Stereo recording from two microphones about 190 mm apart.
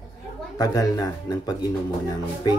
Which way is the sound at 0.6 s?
20° left (ahead or behind).